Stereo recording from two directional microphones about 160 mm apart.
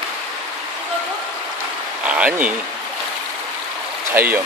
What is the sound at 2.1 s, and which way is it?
Speech, 10° right (ahead or behind).